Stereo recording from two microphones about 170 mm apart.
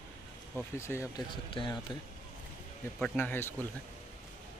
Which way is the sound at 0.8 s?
15° left (ahead or behind).